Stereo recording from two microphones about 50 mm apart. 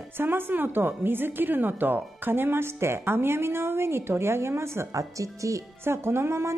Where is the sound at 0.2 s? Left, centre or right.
Right.